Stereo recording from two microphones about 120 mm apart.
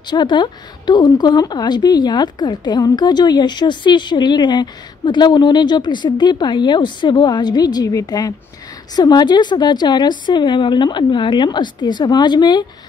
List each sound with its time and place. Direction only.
0.1 s a woman's voice: 40° left (ahead or behind)